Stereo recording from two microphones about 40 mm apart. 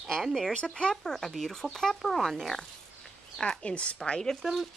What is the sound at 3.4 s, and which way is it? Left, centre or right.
Speech, left.